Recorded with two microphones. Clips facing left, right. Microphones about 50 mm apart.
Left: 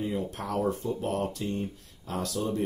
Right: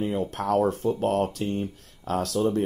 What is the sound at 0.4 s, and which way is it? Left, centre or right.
Speech, right.